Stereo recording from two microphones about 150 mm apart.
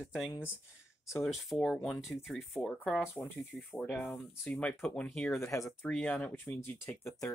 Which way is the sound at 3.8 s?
5° left (ahead or behind).